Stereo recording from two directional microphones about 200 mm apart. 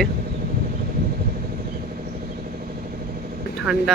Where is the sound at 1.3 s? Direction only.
45° right (ahead or behind).